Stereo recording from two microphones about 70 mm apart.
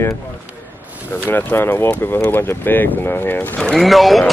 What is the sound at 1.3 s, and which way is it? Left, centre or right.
Speech, left.